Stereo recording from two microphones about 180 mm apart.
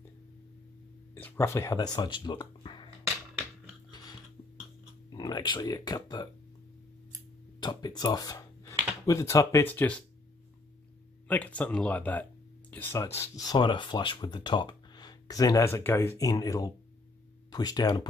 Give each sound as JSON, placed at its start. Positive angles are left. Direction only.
{"t": 1.1, "sound": "speech", "side_deg": 15}
{"t": 5.1, "sound": "speech", "side_deg": 25}
{"t": 7.6, "sound": "speech", "side_deg": 25}
{"t": 11.2, "sound": "speech", "side_deg": 10}